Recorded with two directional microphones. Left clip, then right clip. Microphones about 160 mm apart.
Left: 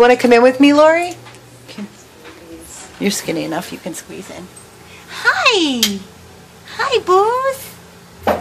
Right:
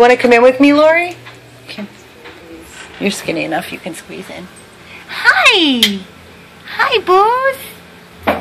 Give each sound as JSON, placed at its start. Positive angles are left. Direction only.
{"t": 0.0, "sound": "speech", "side_deg": 25}
{"t": 3.0, "sound": "speech", "side_deg": 30}
{"t": 5.1, "sound": "a sound", "side_deg": 5}
{"t": 6.7, "sound": "speech", "side_deg": 5}